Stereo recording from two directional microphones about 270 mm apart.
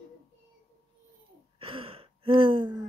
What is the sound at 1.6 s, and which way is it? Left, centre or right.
Gasp, centre.